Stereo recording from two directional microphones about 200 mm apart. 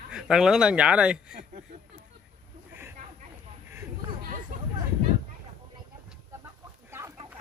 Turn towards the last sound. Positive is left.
turn(degrees=-15)  # may be behind; listen again after turning